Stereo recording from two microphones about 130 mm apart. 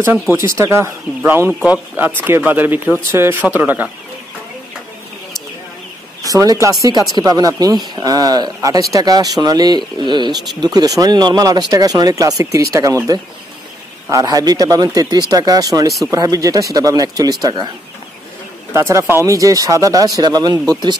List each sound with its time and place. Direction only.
0.6 s speech: 20° right (ahead or behind)
6.2 s speech: 30° right (ahead or behind)
18.7 s speech: 20° right (ahead or behind)